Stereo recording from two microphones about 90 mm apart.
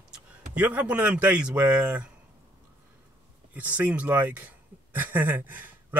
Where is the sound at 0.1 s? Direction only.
15° right (ahead or behind).